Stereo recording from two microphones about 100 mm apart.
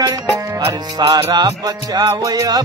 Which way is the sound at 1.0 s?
45° right (ahead or behind).